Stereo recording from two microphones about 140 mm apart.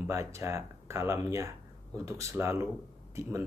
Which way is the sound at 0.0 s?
20° right (ahead or behind).